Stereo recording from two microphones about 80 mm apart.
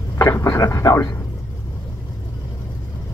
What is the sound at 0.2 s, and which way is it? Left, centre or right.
Speech, left.